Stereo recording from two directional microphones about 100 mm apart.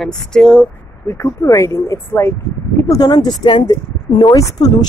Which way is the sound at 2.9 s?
45° left (ahead or behind).